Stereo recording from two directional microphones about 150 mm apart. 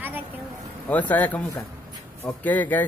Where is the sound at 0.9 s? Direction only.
10° left (ahead or behind).